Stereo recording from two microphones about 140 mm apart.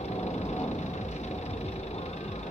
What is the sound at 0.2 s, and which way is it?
Vehicle, 50° left (ahead or behind).